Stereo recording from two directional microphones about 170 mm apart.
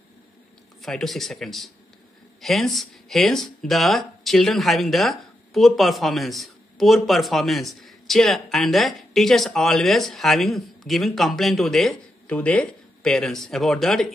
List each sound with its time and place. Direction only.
0.8 s speech: centre (ahead or behind)